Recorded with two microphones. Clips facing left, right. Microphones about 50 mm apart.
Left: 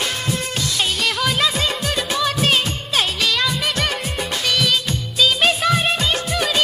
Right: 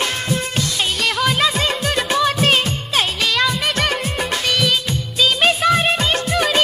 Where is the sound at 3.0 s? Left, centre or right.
Centre.